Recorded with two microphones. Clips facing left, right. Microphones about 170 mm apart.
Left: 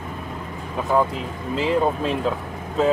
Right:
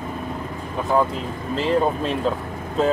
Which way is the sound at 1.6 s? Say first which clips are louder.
Even; 10° left (ahead or behind).